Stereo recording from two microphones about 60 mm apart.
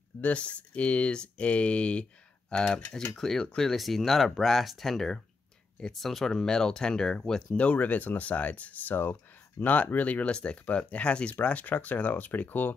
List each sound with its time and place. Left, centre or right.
0.2 s speech: left